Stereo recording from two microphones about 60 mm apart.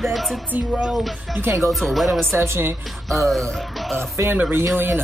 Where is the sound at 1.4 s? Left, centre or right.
Right.